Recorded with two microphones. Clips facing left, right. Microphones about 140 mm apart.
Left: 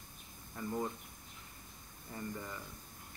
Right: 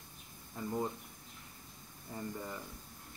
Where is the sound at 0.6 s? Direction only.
20° right (ahead or behind).